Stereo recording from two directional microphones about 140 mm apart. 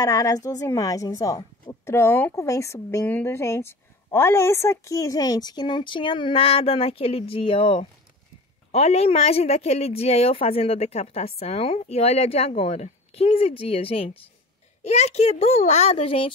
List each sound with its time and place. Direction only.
0.0 s a woman's voice: 25° left (ahead or behind)